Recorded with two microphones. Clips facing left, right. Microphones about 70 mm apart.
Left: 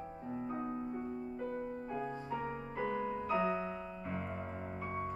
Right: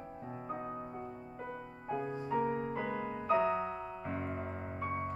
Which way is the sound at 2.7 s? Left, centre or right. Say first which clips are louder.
Left 1 dB; centre.